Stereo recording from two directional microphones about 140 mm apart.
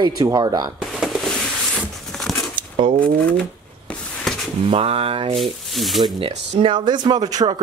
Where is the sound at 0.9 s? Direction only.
5° right (ahead or behind).